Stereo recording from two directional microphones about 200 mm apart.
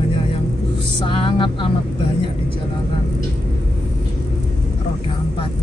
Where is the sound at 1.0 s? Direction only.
25° left (ahead or behind).